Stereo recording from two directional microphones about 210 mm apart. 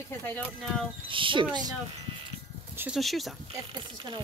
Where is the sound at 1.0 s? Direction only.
25° right (ahead or behind).